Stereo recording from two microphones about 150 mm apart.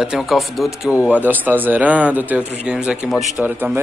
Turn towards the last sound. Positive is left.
turn(degrees=-10)  # may be behind; listen again after turning